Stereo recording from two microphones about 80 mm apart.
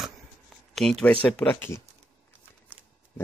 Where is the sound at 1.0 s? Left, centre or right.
Centre.